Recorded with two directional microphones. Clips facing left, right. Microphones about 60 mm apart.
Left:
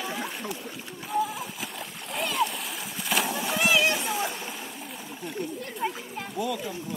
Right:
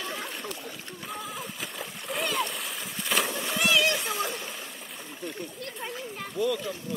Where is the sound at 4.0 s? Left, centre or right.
Centre.